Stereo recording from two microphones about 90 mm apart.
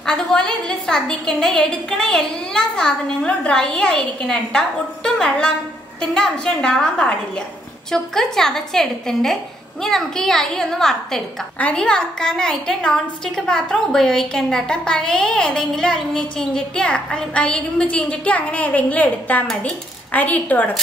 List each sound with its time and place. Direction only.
0.0 s a woman's voice: 10° left (ahead or behind)